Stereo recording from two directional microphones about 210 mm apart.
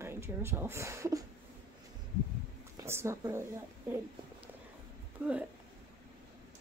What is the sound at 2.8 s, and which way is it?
Speech, 10° right (ahead or behind).